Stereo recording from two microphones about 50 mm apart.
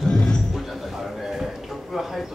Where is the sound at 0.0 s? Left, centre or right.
Centre.